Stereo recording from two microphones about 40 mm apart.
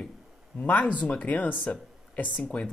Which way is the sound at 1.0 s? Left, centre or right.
Left.